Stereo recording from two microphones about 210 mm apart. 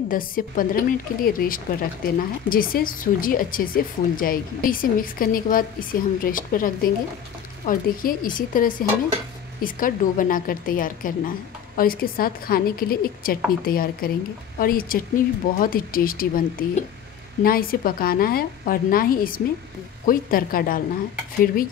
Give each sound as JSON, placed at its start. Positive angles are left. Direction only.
{"t": 0.1, "sound": "speech", "side_deg": 40}